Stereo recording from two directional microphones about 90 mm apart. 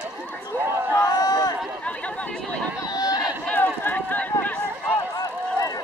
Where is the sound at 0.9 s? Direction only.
40° left (ahead or behind).